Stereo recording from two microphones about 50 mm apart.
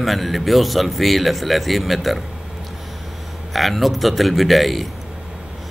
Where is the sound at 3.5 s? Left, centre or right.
Centre.